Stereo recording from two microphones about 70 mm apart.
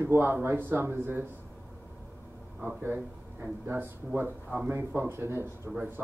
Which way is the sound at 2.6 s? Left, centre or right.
Right.